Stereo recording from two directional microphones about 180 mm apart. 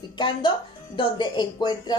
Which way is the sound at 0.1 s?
25° left (ahead or behind).